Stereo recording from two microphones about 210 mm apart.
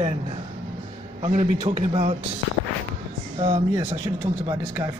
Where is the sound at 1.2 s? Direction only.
25° right (ahead or behind).